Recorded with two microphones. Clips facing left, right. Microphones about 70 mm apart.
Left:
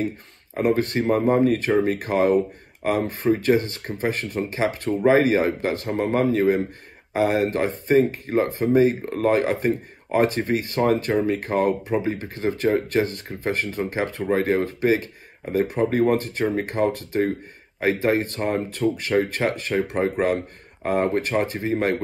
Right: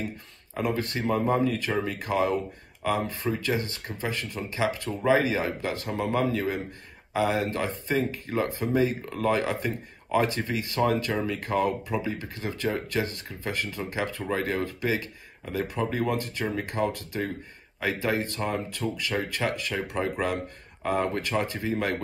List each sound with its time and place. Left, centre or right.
0.7 s speech: left
1.4 s speech: left
1.9 s speech: left